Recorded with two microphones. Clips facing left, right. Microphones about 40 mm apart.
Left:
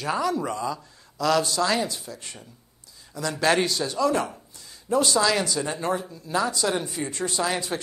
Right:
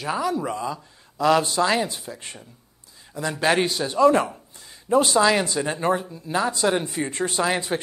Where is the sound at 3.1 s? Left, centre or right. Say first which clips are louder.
Right 1 dB; right.